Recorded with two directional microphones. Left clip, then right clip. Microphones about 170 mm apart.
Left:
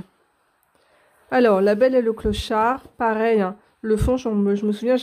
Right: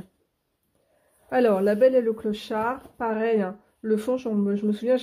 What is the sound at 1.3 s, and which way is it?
A woman's voice, 40° left (ahead or behind).